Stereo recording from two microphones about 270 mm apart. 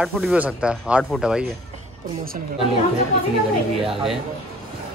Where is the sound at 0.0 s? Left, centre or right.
Centre.